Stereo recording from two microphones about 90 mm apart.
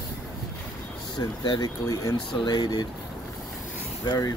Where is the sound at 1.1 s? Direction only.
60° left (ahead or behind).